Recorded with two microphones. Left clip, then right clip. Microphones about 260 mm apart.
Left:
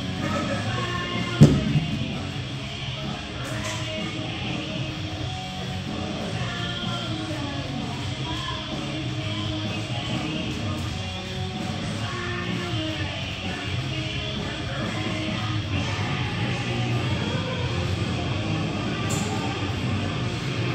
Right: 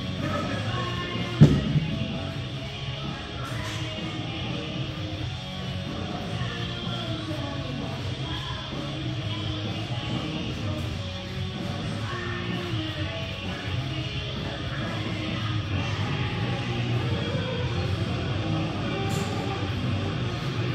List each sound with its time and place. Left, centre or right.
1.4 s music: left